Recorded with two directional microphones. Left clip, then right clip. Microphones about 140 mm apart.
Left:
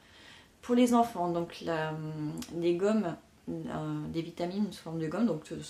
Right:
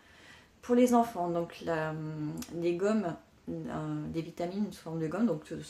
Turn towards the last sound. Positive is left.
turn(degrees=20)  # may be behind; listen again after turning